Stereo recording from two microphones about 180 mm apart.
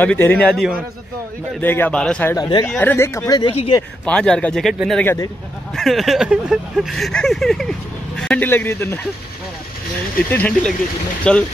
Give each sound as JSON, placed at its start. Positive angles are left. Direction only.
{"t": 0.0, "sound": "speech", "side_deg": 10}
{"t": 2.3, "sound": "speech", "side_deg": 25}
{"t": 2.7, "sound": "speech", "side_deg": 10}
{"t": 4.0, "sound": "speech", "side_deg": 5}
{"t": 5.0, "sound": "speech", "side_deg": 15}
{"t": 5.8, "sound": "speech", "side_deg": 0}
{"t": 10.3, "sound": "speech", "side_deg": 10}